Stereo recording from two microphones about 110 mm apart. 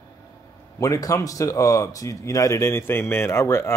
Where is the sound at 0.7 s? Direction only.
30° left (ahead or behind).